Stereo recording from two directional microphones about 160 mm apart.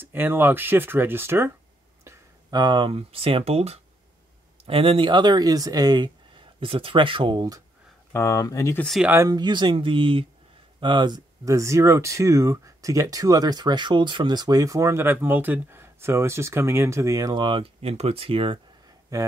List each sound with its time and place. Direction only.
0.0 s speech: 15° right (ahead or behind)
2.0 s speech: 25° right (ahead or behind)
8.1 s speech: 20° left (ahead or behind)
8.8 s speech: centre (ahead or behind)
9.1 s speech: 20° right (ahead or behind)
19.1 s speech: 20° right (ahead or behind)